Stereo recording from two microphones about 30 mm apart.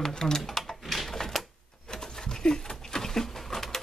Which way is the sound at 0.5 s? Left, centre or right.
Centre.